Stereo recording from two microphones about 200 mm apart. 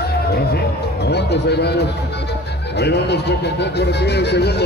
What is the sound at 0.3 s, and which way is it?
Speech, 55° left (ahead or behind).